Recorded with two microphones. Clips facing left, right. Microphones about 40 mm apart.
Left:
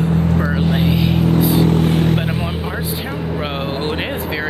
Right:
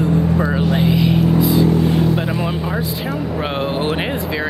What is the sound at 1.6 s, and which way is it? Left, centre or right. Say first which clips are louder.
Vehicle: even; left.